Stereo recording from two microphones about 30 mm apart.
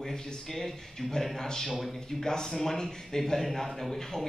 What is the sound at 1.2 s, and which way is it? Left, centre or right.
Speech, centre.